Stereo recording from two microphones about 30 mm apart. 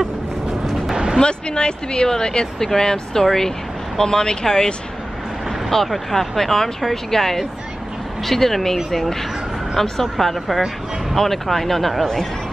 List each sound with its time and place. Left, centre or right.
0.9 s music: right
1.2 s speech: left
5.7 s speech: centre
9.8 s speech: centre